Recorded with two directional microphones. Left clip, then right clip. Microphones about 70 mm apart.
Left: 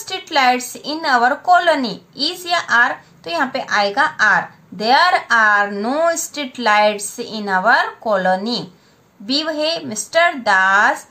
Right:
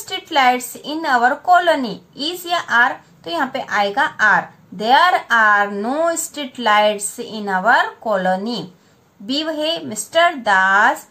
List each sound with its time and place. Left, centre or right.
0.0 s a woman's voice: left